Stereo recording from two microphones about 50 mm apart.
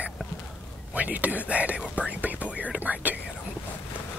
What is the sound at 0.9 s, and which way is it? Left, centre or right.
Speech, right.